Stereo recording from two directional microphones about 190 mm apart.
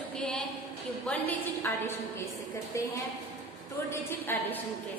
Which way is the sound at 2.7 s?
15° left (ahead or behind).